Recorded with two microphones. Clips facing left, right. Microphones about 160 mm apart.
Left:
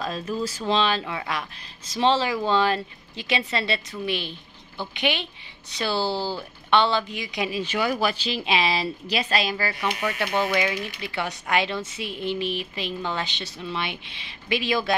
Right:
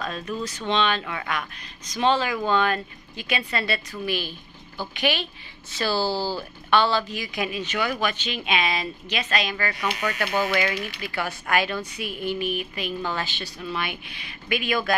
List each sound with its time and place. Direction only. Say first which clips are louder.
0.0 s a woman's voice: left 2 dB; 30° left (ahead or behind)
7.5 s a woman's voice: left 4 dB; 35° left (ahead or behind)